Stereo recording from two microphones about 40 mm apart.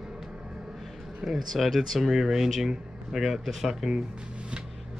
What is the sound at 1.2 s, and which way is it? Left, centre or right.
Speech, centre.